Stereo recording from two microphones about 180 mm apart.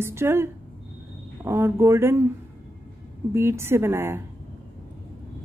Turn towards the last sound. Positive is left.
turn(degrees=-15)  # may be behind; listen again after turning